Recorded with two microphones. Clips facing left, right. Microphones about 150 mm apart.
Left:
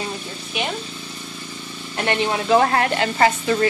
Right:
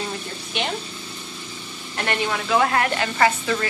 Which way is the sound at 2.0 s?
30° left (ahead or behind).